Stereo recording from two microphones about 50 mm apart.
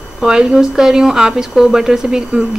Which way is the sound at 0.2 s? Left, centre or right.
Centre.